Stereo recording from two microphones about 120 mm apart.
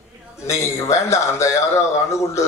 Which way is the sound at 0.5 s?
25° left (ahead or behind).